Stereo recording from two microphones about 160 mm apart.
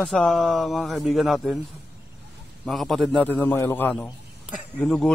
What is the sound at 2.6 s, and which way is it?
A man's voice, centre (ahead or behind).